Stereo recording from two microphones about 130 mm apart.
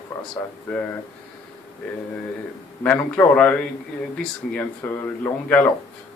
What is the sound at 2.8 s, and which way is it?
Speech, 10° left (ahead or behind).